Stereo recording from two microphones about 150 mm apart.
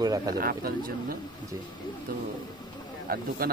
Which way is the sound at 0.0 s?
25° right (ahead or behind).